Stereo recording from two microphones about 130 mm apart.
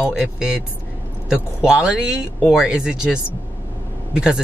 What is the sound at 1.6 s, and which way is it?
A woman's voice, 5° right (ahead or behind).